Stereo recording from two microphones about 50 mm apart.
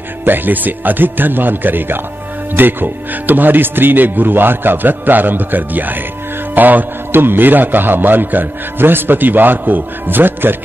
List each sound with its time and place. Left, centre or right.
0.2 s a man's voice: right